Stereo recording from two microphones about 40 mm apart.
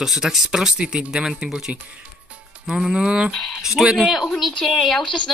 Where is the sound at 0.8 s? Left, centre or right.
Right.